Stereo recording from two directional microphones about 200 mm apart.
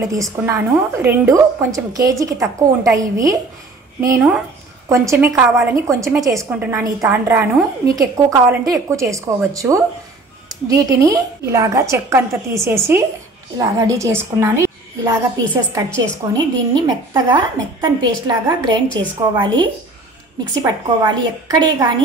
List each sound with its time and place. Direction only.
0.1 s a woman's voice: 15° right (ahead or behind)